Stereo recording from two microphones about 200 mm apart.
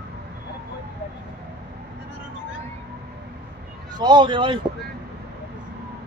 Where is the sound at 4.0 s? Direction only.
20° right (ahead or behind).